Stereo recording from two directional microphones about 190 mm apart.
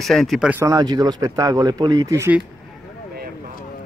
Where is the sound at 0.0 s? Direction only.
Centre (ahead or behind).